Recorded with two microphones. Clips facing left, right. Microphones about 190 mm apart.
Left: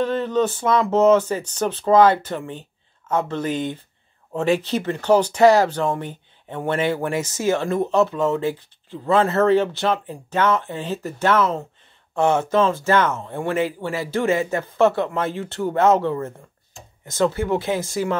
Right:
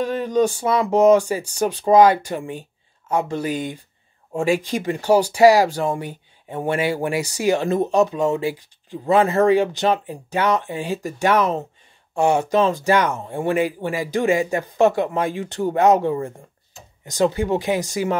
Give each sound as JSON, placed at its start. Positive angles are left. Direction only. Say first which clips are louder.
{"t": 0.0, "sound": "speech", "louder": "right 1 dB", "side_deg": -10}